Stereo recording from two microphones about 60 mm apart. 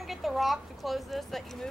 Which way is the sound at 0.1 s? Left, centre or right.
Centre.